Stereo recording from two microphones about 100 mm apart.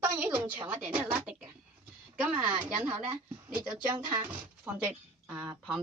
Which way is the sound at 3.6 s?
45° right (ahead or behind).